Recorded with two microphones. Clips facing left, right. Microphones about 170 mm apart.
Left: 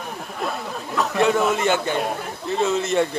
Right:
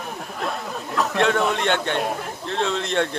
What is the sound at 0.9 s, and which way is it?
A man's voice, 5° left (ahead or behind).